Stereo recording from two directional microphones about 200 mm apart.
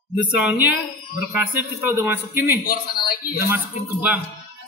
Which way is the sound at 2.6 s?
50° left (ahead or behind).